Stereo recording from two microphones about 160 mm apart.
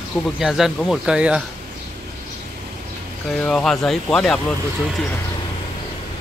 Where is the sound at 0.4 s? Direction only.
Centre (ahead or behind).